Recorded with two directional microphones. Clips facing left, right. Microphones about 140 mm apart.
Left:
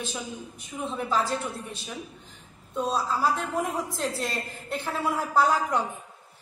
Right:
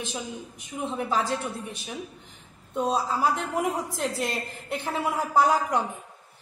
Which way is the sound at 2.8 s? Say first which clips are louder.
Right 1 dB; 20° right (ahead or behind).